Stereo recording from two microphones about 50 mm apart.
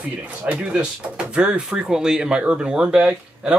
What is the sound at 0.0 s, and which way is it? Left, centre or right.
Speech, right.